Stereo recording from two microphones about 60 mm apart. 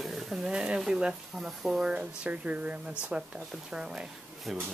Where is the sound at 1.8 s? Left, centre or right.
Centre.